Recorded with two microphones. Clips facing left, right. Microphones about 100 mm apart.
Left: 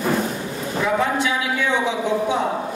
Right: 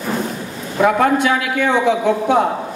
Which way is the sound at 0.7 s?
60° right (ahead or behind).